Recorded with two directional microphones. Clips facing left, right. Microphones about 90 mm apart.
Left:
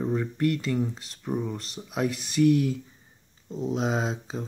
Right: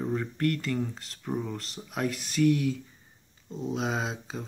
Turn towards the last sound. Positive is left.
turn(degrees=0)  # may be behind; listen again after turning